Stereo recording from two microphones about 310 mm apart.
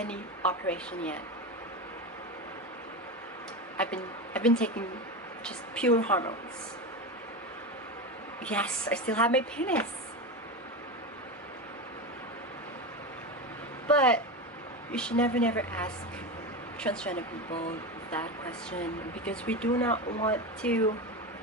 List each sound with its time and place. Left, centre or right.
0.0 s speech: centre
3.7 s a woman's voice: centre
8.5 s speech: centre
13.8 s speech: centre
19.9 s speech: left
20.2 s speech: centre